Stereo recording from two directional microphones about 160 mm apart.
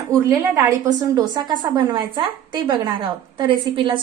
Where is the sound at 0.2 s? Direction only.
20° right (ahead or behind).